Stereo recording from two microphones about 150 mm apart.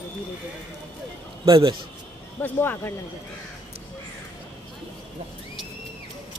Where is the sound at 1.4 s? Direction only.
30° right (ahead or behind).